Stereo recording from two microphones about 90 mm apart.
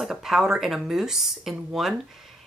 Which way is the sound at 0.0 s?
5° right (ahead or behind).